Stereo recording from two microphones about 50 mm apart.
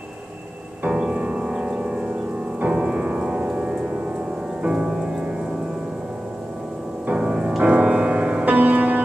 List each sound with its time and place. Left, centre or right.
0.8 s music: right
7.2 s music: right